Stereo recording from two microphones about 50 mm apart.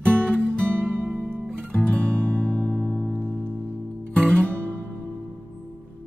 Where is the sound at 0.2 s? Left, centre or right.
Centre.